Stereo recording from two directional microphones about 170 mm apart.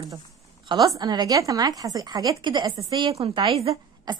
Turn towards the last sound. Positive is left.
turn(degrees=-25)  # may be behind; listen again after turning